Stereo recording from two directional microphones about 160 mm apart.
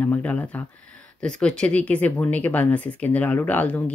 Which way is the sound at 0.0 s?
10° left (ahead or behind).